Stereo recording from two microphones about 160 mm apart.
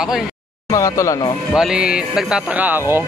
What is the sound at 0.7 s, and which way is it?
Speech, 20° left (ahead or behind).